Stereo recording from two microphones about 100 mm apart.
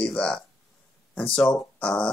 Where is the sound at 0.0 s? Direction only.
10° left (ahead or behind).